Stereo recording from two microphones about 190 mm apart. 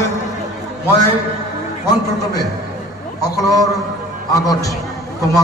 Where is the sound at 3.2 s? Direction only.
20° left (ahead or behind).